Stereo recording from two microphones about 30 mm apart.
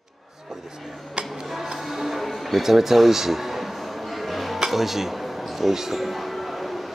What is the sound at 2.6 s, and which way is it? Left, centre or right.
Music, centre.